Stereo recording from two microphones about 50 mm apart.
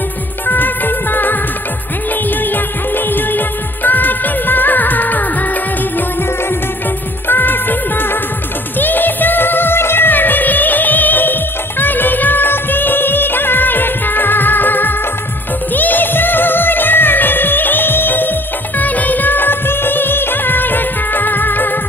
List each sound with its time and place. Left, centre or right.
0.5 s music: left
3.1 s music of bollywood: left
7.2 s music of bollywood: left
8.7 s music: left
11.8 s music of bollywood: left
15.7 s music: left
18.8 s music of bollywood: left